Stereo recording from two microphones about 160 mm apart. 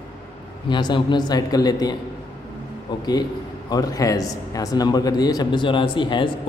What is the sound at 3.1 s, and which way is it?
A man's voice, 25° left (ahead or behind).